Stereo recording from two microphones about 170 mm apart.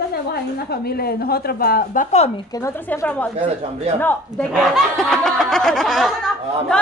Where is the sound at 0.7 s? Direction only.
65° left (ahead or behind); by 2.3 s 45° left (ahead or behind).